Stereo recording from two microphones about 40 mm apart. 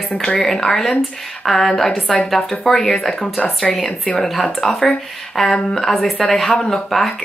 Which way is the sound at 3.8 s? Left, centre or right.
Centre.